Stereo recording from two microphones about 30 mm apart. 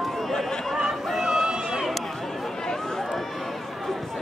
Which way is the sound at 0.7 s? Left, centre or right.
Centre.